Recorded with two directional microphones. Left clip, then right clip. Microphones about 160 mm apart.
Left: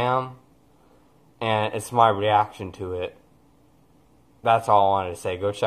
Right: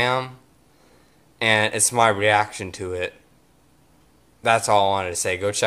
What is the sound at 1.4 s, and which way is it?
Speech, 20° right (ahead or behind).